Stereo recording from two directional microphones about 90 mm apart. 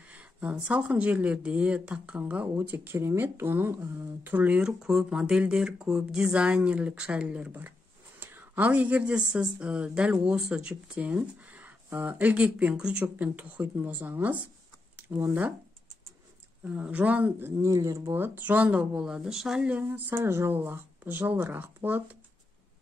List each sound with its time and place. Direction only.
0.1 s speech: 15° right (ahead or behind)
16.6 s speech: 15° right (ahead or behind)
17.6 s speech: 35° right (ahead or behind)
18.1 s speech: 20° right (ahead or behind)
19.9 s speech: 25° right (ahead or behind)